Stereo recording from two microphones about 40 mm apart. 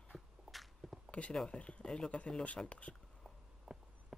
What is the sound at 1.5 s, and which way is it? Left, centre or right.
Speech, left.